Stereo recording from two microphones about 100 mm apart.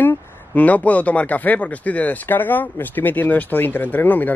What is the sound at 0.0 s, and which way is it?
Speech, 20° left (ahead or behind).